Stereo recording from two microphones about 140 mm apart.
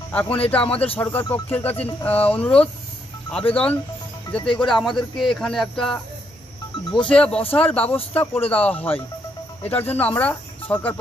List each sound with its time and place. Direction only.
0.1 s speech: 10° left (ahead or behind)
4.4 s speech: 35° left (ahead or behind)
4.6 s speech: centre (ahead or behind)
7.1 s speech: 10° left (ahead or behind)